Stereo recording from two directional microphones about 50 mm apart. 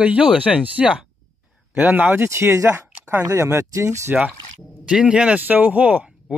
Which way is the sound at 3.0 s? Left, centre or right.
Right.